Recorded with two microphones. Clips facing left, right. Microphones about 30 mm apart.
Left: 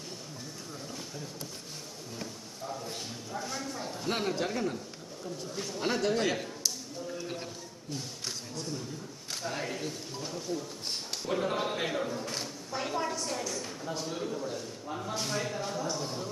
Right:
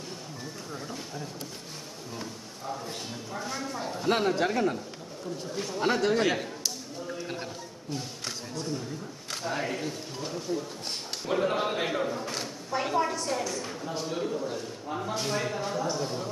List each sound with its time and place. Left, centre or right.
2.1 s a woman's voice: centre
7.2 s a sound: centre
8.5 s a woman's voice: centre